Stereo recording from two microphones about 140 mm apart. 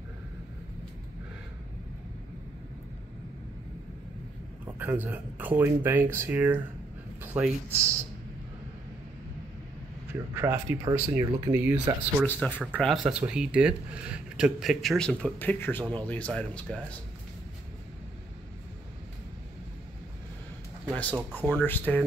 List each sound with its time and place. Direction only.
4.6 s speech: 15° right (ahead or behind)
10.3 s speech: 15° right (ahead or behind)
10.9 s speech: 30° right (ahead or behind)
12.4 s speech: 10° left (ahead or behind)
12.8 s speech: 5° right (ahead or behind)
20.9 s speech: 10° left (ahead or behind)